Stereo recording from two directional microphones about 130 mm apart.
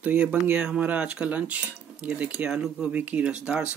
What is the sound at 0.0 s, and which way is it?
Speech, 10° right (ahead or behind).